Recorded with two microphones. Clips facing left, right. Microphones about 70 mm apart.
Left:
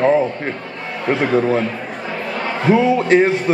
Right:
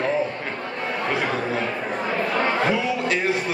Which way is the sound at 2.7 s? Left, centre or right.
Left.